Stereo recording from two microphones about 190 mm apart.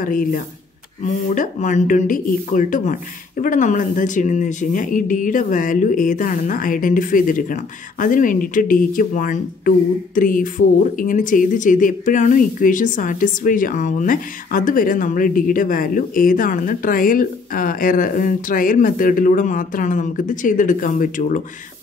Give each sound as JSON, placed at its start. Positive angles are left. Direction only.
{"t": 0.0, "sound": "speech", "side_deg": 45}